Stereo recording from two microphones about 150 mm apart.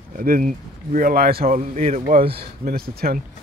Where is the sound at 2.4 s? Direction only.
90° right.